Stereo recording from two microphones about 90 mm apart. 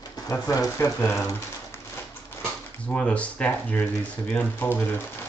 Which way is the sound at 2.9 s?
15° left (ahead or behind).